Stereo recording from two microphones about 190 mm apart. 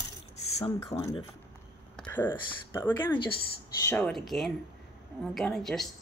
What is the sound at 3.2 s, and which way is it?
Speech, 25° left (ahead or behind).